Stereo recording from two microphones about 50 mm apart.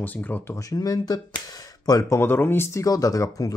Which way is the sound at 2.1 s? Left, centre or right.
Left.